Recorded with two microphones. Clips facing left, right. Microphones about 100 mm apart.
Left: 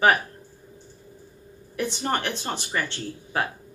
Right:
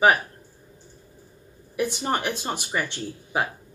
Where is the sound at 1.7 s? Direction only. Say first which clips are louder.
Right 1 dB; 10° right (ahead or behind).